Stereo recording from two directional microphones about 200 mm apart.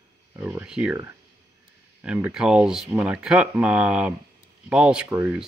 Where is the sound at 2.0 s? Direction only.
5° right (ahead or behind).